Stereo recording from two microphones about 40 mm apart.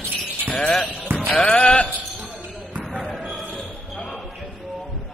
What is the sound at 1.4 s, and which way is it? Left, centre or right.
Speech, left.